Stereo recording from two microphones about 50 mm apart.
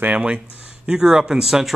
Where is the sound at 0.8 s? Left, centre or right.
Centre.